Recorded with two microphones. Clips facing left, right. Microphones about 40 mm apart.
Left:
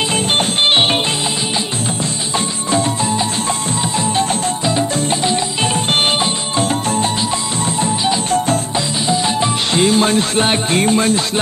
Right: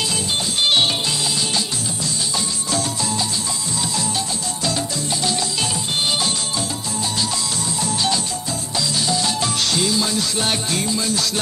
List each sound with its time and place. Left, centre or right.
2.7 s music: left
4.6 s music: left
7.8 s music: left
9.8 s music: left